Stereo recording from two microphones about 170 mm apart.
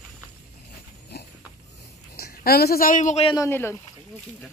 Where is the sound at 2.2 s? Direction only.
65° left (ahead or behind); by 3.2 s 45° left (ahead or behind).